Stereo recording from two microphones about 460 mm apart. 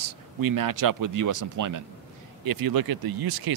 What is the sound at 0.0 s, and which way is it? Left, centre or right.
Speech, right.